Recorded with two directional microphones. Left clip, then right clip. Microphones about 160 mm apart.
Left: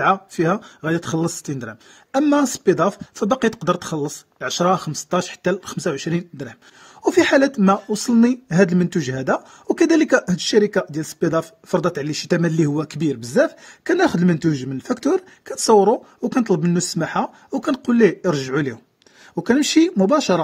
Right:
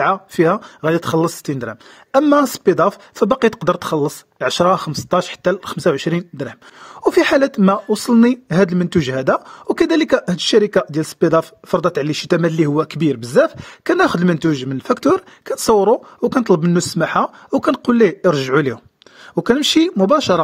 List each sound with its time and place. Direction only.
0.0 s speech: 35° right (ahead or behind)